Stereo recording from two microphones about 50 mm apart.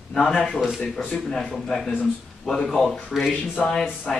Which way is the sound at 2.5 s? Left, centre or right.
Centre.